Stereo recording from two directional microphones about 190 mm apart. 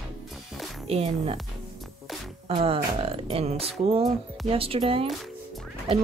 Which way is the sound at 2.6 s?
30° right (ahead or behind).